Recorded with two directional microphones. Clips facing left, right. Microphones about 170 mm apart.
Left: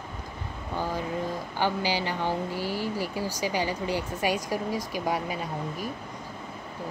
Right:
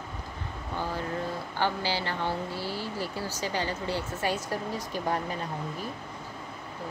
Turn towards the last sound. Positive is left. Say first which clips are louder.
# left 2 dB
turn(degrees=10)  # may be behind; listen again after turning